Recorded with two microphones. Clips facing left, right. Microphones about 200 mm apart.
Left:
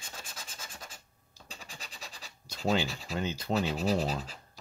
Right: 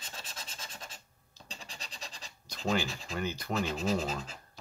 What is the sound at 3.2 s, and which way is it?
Speech, 20° left (ahead or behind).